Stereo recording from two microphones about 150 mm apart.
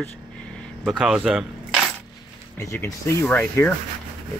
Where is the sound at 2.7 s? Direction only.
15° left (ahead or behind).